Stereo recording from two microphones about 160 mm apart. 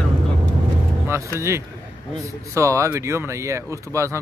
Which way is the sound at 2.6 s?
20° right (ahead or behind).